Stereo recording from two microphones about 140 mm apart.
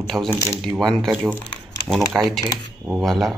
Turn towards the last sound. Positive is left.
turn(degrees=0)  # may be behind; listen again after turning